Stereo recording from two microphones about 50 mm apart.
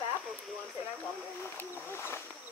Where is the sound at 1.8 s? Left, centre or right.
Left.